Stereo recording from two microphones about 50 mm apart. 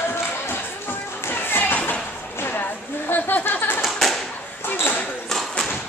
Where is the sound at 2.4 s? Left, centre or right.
Left.